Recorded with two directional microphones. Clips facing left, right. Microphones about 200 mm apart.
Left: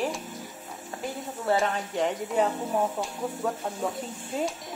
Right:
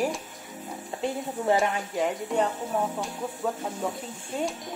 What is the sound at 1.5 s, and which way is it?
Speech, 15° right (ahead or behind).